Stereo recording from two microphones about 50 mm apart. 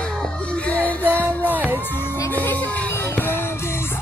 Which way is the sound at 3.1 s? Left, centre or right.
Left.